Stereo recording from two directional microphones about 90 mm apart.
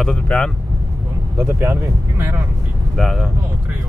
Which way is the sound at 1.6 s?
25° right (ahead or behind).